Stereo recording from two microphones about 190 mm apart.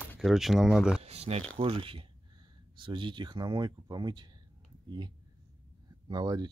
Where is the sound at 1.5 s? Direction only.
30° right (ahead or behind).